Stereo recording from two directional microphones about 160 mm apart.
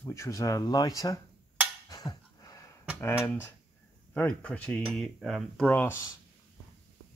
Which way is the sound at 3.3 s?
15° left (ahead or behind).